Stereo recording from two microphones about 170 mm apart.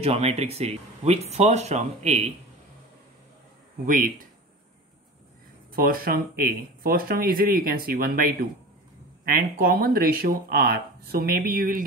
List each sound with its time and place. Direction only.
0.0 s speech: 35° right (ahead or behind)
3.8 s speech: 55° right (ahead or behind)
5.7 s speech: 60° right (ahead or behind)